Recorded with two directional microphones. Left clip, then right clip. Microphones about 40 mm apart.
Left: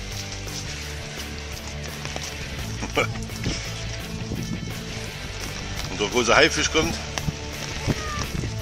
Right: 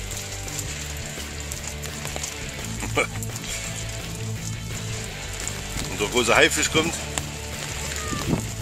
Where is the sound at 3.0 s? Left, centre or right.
Left.